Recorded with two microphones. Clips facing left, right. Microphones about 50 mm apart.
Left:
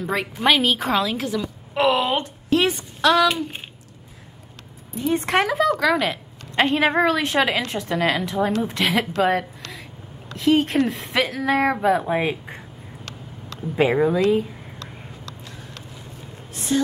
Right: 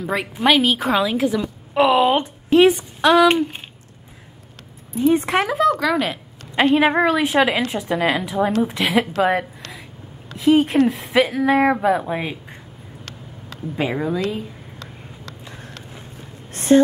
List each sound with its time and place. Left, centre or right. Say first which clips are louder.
0.0 s a woman's voice: right 2 dB; centre
5.0 s a woman's voice: right 3 dB; centre
9.2 s a sound: right 1 dB; centre
10.3 s a woman's voice: right 3 dB; centre
12.1 s speech: left 3 dB; centre
13.7 s speech: left 4 dB; centre
16.5 s a sound: right 9 dB; right